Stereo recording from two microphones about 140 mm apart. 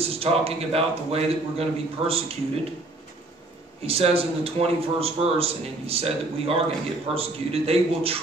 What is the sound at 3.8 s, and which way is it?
A man's voice, 45° right (ahead or behind).